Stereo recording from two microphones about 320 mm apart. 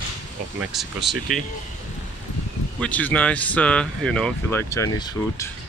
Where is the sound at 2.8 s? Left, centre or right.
Centre.